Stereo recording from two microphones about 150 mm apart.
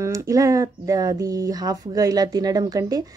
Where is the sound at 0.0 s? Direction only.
25° right (ahead or behind).